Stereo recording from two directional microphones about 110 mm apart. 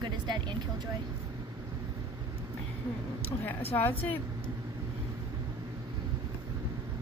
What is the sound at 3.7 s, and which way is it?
Speech, 20° left (ahead or behind).